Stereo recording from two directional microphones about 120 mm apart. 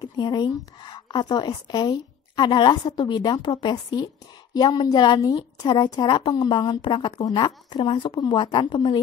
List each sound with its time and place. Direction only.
0.0 s speech: 35° left (ahead or behind)